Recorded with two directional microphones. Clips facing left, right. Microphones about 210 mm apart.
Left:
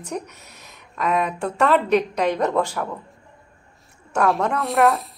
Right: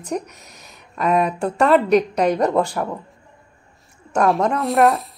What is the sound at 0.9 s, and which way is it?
A woman's voice, 35° right (ahead or behind).